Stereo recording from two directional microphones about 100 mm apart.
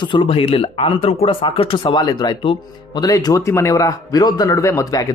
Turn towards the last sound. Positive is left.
turn(degrees=35)  # may be behind; listen again after turning